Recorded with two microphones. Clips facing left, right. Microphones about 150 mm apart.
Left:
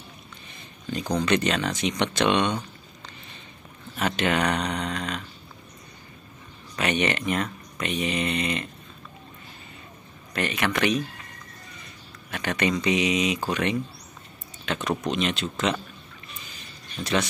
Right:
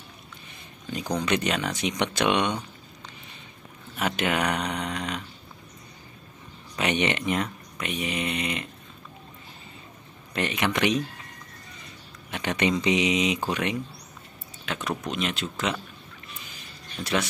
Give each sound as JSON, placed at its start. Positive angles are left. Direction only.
{"t": 0.8, "sound": "speech", "side_deg": -10}
{"t": 4.0, "sound": "speech", "side_deg": -10}
{"t": 6.8, "sound": "speech", "side_deg": -20}
{"t": 10.3, "sound": "speech", "side_deg": -20}
{"t": 12.3, "sound": "speech", "side_deg": -20}
{"t": 17.0, "sound": "speech", "side_deg": -5}